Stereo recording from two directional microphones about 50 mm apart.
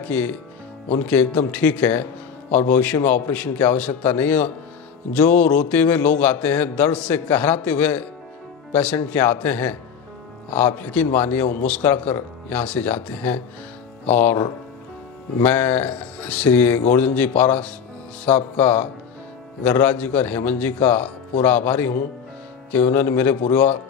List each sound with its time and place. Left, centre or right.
0.0 s a man's voice: left
15.4 s a man's voice: left
22.8 s a man's voice: left